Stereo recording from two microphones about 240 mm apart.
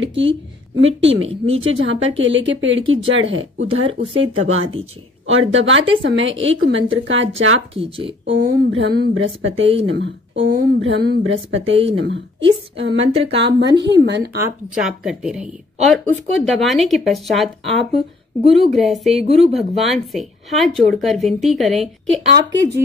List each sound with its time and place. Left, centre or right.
0.0 s speech: right
3.8 s speech: right
4.2 s speech: right
7.7 s speech: right
8.0 s speech: right
8.4 s speech: right
13.0 s speech: right
13.7 s speech: right
14.4 s speech: centre
18.6 s speech: centre
19.2 s speech: right
19.5 s speech: centre
22.3 s speech: right